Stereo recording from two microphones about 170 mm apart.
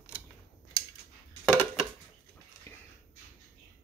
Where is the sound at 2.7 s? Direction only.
15° left (ahead or behind).